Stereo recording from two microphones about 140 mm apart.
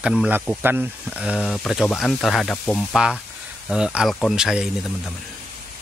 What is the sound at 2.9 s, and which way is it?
Speech, 5° right (ahead or behind).